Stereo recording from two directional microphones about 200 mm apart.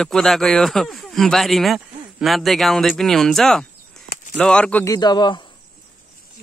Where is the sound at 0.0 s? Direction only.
Centre (ahead or behind).